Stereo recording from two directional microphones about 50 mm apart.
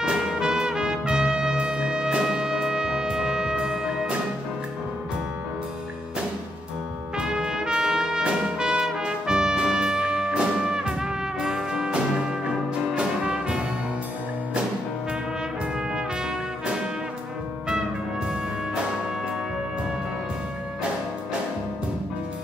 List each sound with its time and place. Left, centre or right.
0.0 s trumpet: centre
7.2 s trumpet: centre